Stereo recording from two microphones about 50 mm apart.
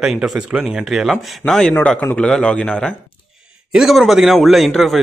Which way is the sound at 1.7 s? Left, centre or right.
Left.